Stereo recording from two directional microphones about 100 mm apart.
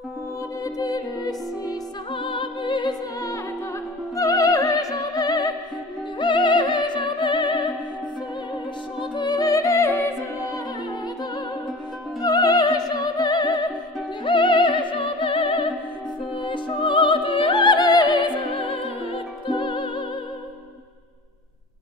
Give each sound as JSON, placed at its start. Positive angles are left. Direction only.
{"t": 0.7, "sound": "music", "side_deg": 40}
{"t": 2.1, "sound": "music", "side_deg": 60}
{"t": 4.2, "sound": "opera", "side_deg": 35}
{"t": 6.1, "sound": "music", "side_deg": 50}
{"t": 9.1, "sound": "music", "side_deg": 45}
{"t": 12.2, "sound": "music", "side_deg": 40}
{"t": 14.2, "sound": "opera", "side_deg": 55}
{"t": 16.4, "sound": "music", "side_deg": 55}
{"t": 19.5, "sound": "music", "side_deg": 55}